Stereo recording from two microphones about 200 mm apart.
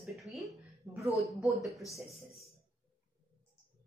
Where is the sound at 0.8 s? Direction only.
15° right (ahead or behind).